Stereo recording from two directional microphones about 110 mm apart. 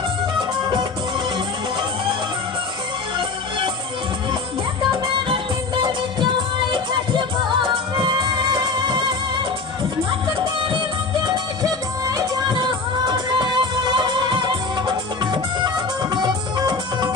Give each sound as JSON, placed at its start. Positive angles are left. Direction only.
{"t": 0.4, "sound": "music", "side_deg": -45}
{"t": 3.2, "sound": "music", "side_deg": -50}
{"t": 6.7, "sound": "music", "side_deg": -45}
{"t": 10.2, "sound": "music", "side_deg": -45}
{"t": 12.1, "sound": "music", "side_deg": -30}
{"t": 12.5, "sound": "music", "side_deg": -40}